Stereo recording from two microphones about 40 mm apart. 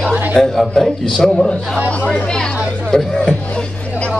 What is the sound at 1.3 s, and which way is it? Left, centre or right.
Speech, left.